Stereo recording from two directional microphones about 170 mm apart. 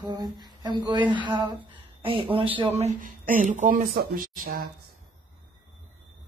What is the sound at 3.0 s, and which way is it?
Speech, 55° right (ahead or behind).